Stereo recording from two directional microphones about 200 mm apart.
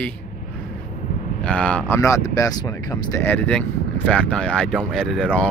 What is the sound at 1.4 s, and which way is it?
Speech, 5° left (ahead or behind).